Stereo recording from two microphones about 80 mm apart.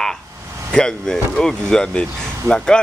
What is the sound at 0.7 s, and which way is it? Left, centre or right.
Speech, centre.